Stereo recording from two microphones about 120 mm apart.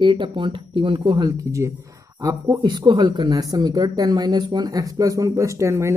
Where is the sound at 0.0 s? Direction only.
40° right (ahead or behind).